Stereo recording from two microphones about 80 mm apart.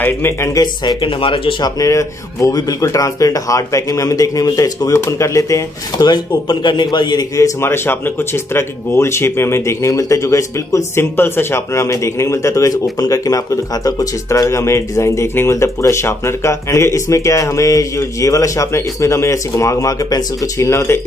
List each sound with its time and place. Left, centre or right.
0.0 s speech: left
1.0 s speech: left
1.8 s speech: left
6.0 s a man's voice: left
7.3 s speech: left
20.6 s speech: left